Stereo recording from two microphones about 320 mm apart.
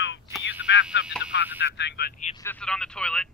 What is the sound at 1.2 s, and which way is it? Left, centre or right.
Speech, left.